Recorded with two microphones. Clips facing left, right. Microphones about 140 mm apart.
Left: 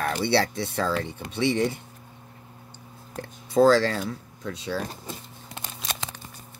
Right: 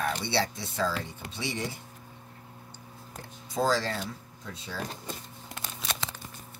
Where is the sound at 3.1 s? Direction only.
65° left (ahead or behind).